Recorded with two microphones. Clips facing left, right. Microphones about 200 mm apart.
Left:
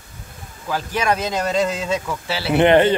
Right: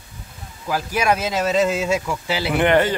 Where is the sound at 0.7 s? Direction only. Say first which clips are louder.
Right 1 dB; 10° right (ahead or behind).